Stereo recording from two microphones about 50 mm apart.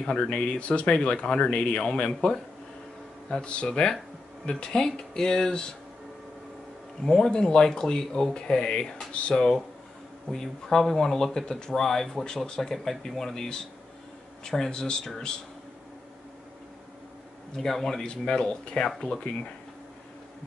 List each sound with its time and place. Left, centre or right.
0.0 s speech: centre
7.1 s speech: centre
17.6 s speech: centre